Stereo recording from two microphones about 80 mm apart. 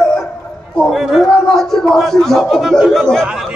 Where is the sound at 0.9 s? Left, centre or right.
Centre.